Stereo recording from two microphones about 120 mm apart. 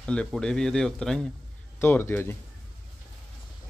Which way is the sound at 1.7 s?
20° left (ahead or behind).